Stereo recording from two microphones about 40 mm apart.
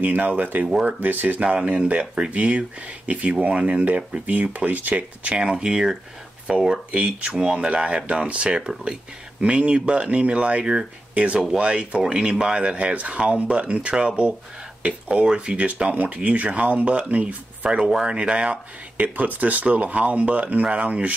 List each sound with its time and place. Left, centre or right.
0.0 s speech: right
1.4 s speech: right
2.3 s speech: right
5.4 s speech: centre; by 17.4 s right
18.0 s speech: right
18.9 s speech: right